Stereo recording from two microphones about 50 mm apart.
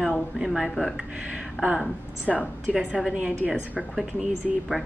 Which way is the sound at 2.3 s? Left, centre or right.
Centre.